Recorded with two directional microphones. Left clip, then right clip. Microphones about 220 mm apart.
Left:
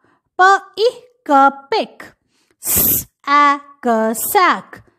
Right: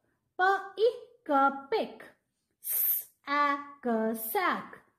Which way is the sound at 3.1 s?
35° left (ahead or behind).